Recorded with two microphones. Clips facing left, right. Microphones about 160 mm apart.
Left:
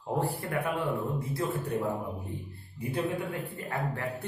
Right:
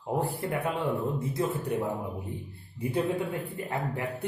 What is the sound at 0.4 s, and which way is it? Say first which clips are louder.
Speech: right 1 dB; 20° right (ahead or behind).